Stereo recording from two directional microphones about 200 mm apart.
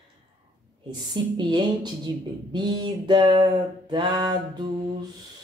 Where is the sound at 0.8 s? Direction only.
20° right (ahead or behind).